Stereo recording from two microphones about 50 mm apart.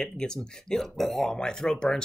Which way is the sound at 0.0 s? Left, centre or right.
Centre.